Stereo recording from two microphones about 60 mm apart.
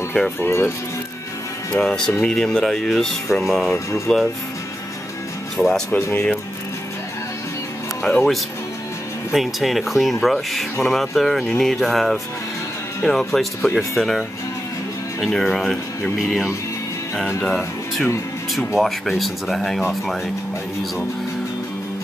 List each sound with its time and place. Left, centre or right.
0.4 s speech: left
1.7 s speech: centre
3.7 s speech: left
5.6 s speech: centre
5.9 s speech: left
8.0 s speech: centre
9.3 s speech: centre
15.3 s speech: centre
17.4 s speech: centre